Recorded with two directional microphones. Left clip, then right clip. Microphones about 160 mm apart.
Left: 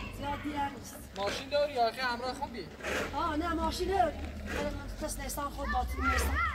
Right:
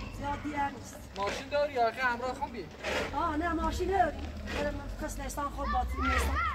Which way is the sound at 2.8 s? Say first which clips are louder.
Right 1 dB; 70° left (ahead or behind).